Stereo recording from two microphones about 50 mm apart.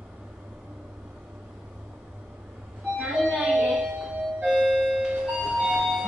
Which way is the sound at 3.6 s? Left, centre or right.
Centre.